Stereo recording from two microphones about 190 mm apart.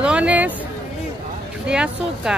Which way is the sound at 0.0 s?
5° right (ahead or behind).